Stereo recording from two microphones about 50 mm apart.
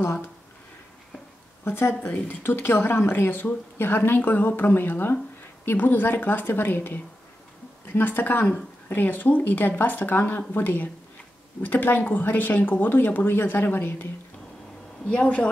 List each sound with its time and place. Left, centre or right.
1.6 s speech: left
15.0 s speech: left